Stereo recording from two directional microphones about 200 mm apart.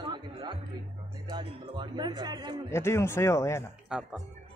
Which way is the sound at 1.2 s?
20° right (ahead or behind).